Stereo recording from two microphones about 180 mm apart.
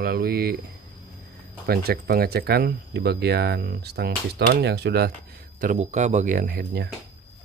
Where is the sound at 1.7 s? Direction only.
60° right (ahead or behind).